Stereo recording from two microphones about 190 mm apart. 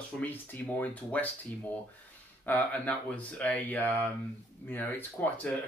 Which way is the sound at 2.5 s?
10° left (ahead or behind).